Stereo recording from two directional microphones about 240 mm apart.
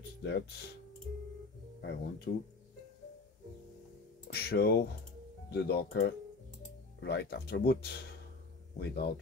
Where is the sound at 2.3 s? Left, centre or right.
Left.